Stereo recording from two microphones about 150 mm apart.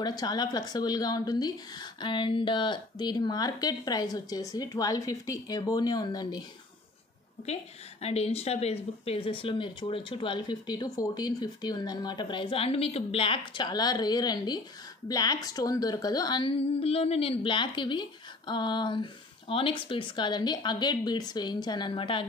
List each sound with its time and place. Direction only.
0.0 s a woman's voice: 25° left (ahead or behind)
8.0 s a woman's voice: 45° left (ahead or behind)